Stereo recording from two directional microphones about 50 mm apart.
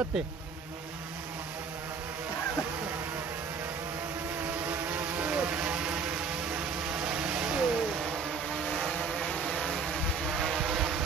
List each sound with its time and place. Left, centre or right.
4.6 s vehicle: right; by 8.1 s centre
8.7 s vehicle: centre